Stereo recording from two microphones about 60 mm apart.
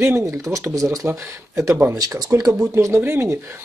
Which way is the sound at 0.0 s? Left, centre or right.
Right.